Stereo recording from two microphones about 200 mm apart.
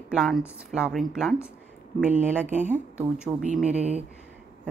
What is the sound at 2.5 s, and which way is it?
Speech, 40° right (ahead or behind).